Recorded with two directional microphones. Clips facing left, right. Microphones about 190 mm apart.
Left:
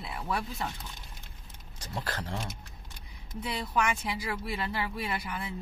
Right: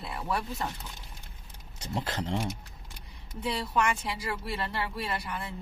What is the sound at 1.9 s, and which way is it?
Speech, 20° right (ahead or behind).